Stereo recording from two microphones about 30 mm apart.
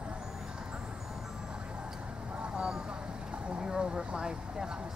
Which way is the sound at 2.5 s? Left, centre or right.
Centre.